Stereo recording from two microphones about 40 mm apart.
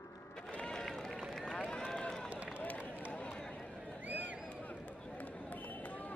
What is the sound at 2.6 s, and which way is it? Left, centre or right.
Run, left.